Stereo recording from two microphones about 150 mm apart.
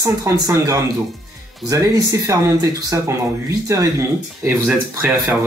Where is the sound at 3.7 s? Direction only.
20° right (ahead or behind).